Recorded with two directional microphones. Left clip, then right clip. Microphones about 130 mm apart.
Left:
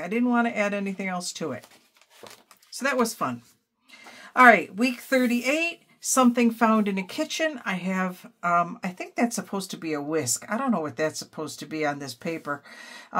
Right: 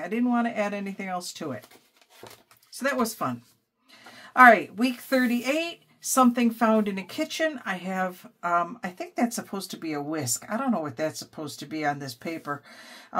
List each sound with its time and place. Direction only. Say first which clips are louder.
0.0 s speech: left 2 dB; 35° left (ahead or behind)
2.7 s speech: left 2 dB; 35° left (ahead or behind)